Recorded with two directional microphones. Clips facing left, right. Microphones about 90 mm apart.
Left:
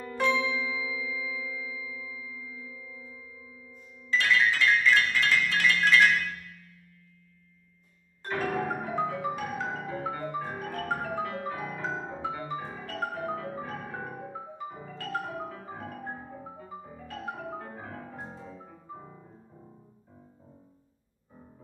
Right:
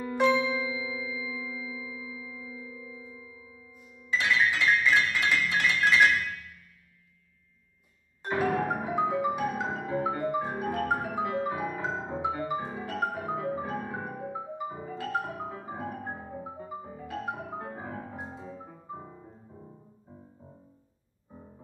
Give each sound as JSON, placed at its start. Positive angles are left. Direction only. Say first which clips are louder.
{"t": 0.0, "sound": "glockenspiel", "louder": "right 3 dB", "side_deg": -15}
{"t": 0.7, "sound": "tubular bells", "louder": "even", "side_deg": -25}
{"t": 1.1, "sound": "singing bowl", "louder": "even", "side_deg": -20}
{"t": 1.8, "sound": "tuning fork", "louder": "right 1 dB", "side_deg": -25}
{"t": 3.7, "sound": "music", "louder": "left 2 dB", "side_deg": -15}
{"t": 8.2, "sound": "music", "louder": "right 3 dB", "side_deg": -15}